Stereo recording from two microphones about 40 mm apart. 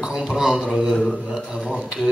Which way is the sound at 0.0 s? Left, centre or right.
Right.